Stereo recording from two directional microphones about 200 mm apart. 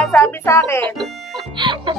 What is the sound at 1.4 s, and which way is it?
Speech, 25° right (ahead or behind).